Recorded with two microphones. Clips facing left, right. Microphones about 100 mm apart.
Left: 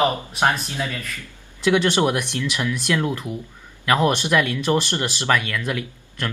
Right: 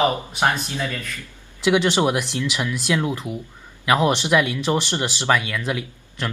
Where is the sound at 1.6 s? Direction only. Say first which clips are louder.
Even; 15° right (ahead or behind).